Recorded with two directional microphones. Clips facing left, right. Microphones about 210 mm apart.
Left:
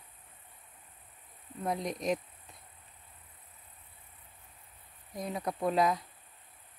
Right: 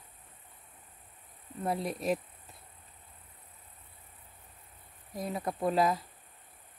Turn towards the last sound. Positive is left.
turn(degrees=0)  # may be behind; listen again after turning